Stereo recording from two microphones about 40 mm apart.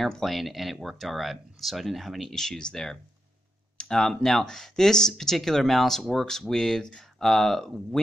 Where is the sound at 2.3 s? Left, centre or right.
Centre.